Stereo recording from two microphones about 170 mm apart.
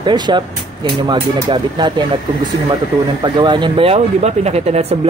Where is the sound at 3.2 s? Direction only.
25° right (ahead or behind).